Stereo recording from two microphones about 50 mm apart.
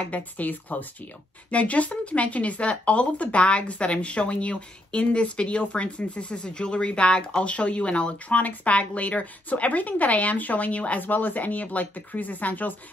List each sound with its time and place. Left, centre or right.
0.0 s speech: left